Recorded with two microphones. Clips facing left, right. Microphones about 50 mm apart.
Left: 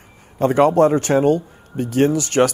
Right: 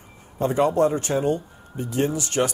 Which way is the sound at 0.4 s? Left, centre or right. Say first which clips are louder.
Left 6 dB; left.